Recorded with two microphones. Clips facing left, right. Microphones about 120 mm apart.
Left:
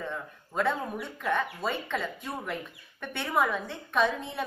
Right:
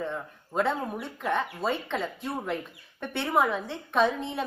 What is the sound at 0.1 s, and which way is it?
A woman's voice, 20° right (ahead or behind).